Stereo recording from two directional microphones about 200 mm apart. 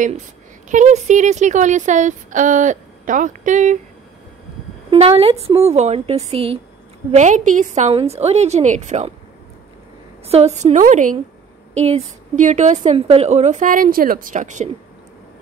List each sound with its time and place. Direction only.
0.7 s speech: 35° right (ahead or behind)
4.9 s speech: 30° right (ahead or behind)
10.2 s speech: 30° right (ahead or behind)